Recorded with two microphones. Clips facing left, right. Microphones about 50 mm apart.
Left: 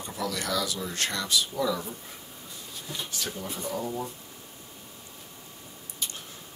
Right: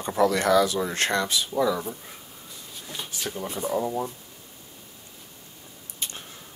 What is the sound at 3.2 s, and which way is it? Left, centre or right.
Speech, right.